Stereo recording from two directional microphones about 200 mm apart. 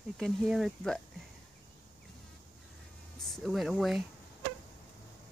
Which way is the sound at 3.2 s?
Centre (ahead or behind).